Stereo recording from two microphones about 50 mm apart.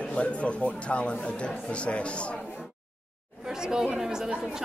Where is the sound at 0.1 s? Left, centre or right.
Left.